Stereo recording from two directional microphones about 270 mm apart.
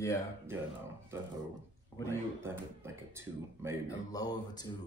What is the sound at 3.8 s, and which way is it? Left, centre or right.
Speech, centre.